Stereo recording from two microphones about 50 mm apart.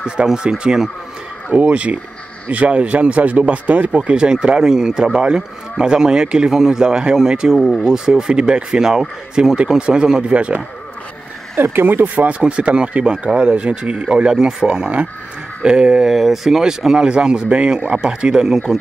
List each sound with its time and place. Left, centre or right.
0.0 s speech: centre
1.5 s speech: right
11.5 s speech: right; by 16.1 s centre
16.1 s speech: centre